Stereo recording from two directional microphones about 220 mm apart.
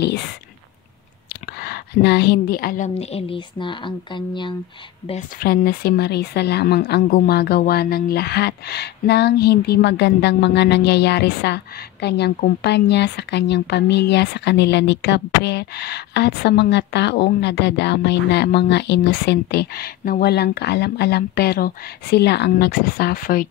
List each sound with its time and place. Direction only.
1.3 s a woman's voice: 45° left (ahead or behind); by 4.6 s 20° left (ahead or behind)
5.4 s a woman's voice: 45° left (ahead or behind)